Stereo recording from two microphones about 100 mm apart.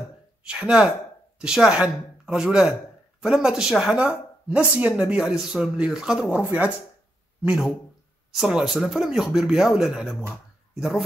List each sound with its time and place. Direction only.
0.5 s speech: 10° right (ahead or behind)
6.3 s speech: 15° right (ahead or behind)
7.4 s speech: centre (ahead or behind)